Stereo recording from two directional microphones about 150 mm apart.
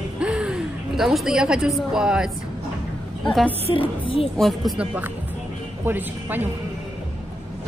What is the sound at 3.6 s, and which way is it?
Speech, 35° left (ahead or behind).